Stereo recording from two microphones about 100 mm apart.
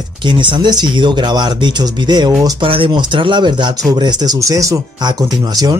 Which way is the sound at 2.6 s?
65° right (ahead or behind).